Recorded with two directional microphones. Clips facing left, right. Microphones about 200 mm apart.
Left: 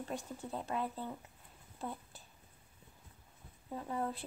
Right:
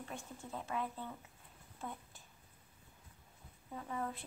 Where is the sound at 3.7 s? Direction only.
35° left (ahead or behind).